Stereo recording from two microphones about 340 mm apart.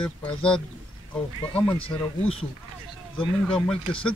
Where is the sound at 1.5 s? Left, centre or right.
Centre.